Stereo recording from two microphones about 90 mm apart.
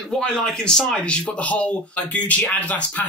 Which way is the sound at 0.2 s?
5° left (ahead or behind).